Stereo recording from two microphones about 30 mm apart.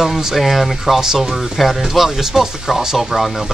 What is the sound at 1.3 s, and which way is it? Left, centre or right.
Speech, centre.